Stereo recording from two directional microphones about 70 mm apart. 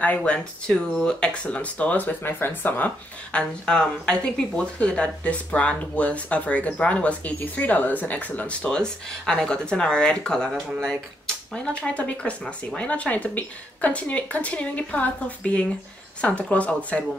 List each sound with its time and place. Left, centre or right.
0.0 s speech: left
3.3 s speech: centre